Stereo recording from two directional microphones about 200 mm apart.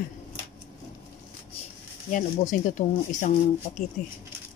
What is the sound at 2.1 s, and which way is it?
Speech, 40° left (ahead or behind).